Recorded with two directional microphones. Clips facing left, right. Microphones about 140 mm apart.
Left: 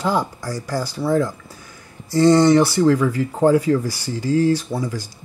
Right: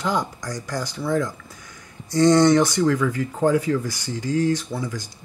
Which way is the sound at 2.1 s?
5° left (ahead or behind).